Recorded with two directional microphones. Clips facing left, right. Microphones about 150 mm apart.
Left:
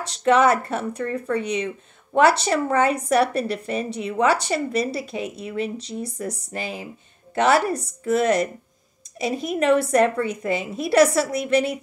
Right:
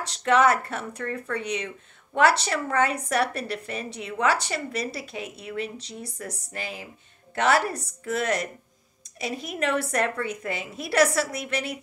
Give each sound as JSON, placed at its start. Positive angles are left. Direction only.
{"t": 0.2, "sound": "a woman's voice", "side_deg": 25}